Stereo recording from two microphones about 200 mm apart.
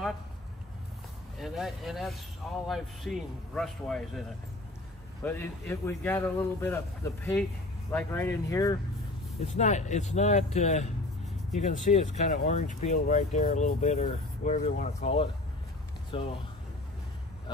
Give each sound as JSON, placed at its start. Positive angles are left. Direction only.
{"t": 1.4, "sound": "speech", "side_deg": 0}
{"t": 7.9, "sound": "speech", "side_deg": 10}
{"t": 9.4, "sound": "speech", "side_deg": 35}